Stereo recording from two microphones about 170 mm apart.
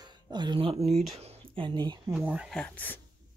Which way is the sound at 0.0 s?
25° right (ahead or behind).